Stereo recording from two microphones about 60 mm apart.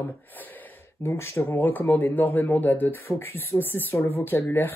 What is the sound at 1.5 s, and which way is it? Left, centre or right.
Speech, left.